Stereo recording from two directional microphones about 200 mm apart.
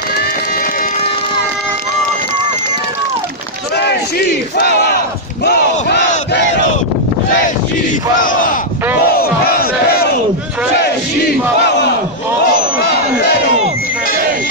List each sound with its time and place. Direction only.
3.7 s battle cry: 55° left (ahead or behind)
8.2 s speech: 40° left (ahead or behind)
9.0 s battle cry: 50° left (ahead or behind)